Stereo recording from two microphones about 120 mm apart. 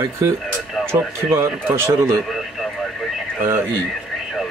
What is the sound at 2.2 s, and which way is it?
Radio, centre (ahead or behind).